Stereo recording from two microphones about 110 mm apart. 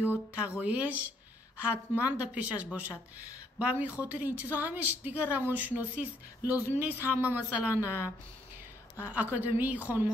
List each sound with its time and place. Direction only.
0.3 s a woman's voice: 10° right (ahead or behind)